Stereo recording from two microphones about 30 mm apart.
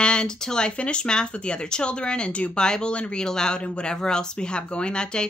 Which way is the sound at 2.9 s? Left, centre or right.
Left.